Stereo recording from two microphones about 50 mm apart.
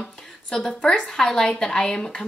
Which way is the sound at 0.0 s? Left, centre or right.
Centre.